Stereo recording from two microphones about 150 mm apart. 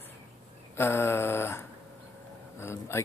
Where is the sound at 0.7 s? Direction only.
15° left (ahead or behind).